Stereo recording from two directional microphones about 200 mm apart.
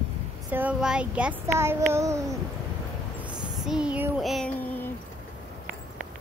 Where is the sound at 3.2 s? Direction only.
5° right (ahead or behind).